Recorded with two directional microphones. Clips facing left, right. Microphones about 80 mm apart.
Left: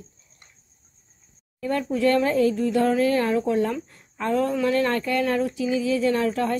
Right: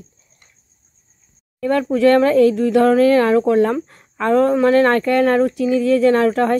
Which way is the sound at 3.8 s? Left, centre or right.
Right.